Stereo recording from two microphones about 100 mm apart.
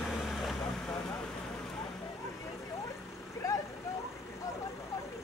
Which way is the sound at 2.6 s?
35° left (ahead or behind).